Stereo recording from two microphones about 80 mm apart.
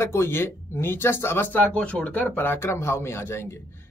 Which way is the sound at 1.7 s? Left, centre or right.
Centre.